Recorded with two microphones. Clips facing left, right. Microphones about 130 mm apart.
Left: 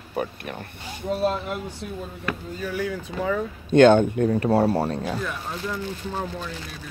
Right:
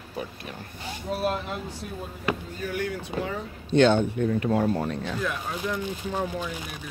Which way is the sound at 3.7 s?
50° left (ahead or behind).